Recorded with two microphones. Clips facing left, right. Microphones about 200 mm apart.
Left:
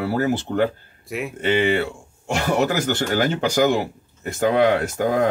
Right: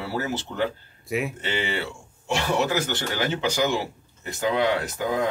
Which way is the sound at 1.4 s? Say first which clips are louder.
Left 9 dB; 55° left (ahead or behind).